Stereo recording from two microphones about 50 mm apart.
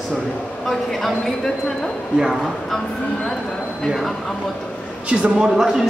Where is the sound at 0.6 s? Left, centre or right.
Centre.